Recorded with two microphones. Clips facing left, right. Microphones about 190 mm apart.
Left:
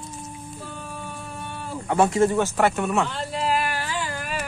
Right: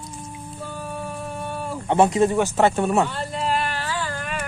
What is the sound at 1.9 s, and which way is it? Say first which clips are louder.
Speech: right 2 dB; 20° right (ahead or behind).